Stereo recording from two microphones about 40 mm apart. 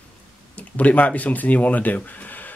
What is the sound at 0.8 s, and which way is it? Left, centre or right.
Speech, left.